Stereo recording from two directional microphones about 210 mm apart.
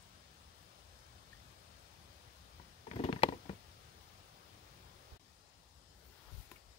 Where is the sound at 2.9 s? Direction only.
30° left (ahead or behind).